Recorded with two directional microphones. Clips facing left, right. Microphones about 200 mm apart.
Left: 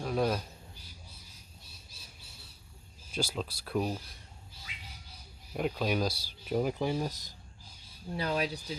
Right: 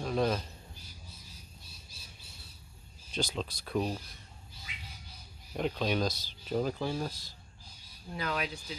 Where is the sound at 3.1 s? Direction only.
5° left (ahead or behind).